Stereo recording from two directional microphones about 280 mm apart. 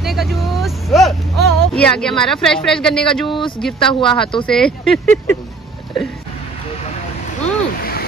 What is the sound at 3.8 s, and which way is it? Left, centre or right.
Speech, centre.